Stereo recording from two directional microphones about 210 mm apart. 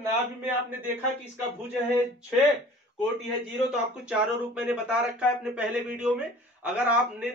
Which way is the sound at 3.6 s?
5° right (ahead or behind).